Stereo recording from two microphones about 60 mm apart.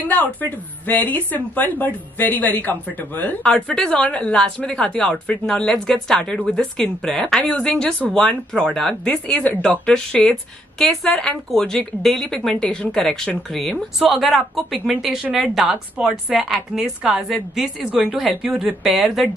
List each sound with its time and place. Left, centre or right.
0.0 s a woman's voice: left
3.4 s speech: centre
7.4 s a woman's voice: centre